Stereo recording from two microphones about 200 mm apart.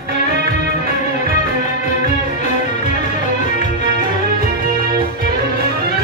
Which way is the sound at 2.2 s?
35° left (ahead or behind).